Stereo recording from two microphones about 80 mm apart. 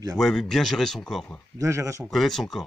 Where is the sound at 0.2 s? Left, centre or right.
Centre.